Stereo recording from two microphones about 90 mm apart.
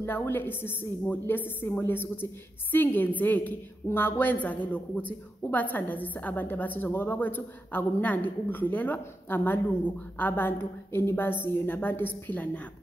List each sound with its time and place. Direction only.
0.0 s a woman's voice: 25° left (ahead or behind)